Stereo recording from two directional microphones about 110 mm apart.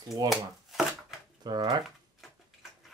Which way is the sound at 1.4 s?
40° right (ahead or behind).